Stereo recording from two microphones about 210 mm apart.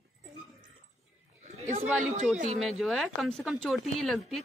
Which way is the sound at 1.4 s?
30° right (ahead or behind).